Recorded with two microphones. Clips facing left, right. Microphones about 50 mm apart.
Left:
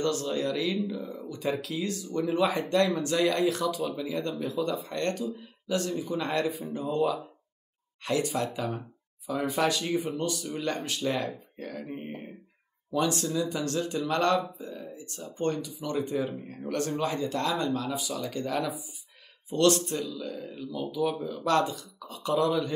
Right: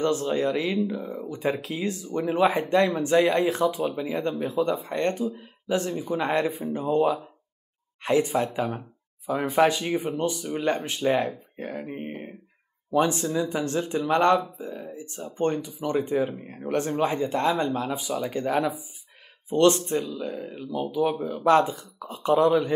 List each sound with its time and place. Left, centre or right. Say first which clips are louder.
0.0 s speech: right 4 dB; right
9.6 s speech: right 7 dB; right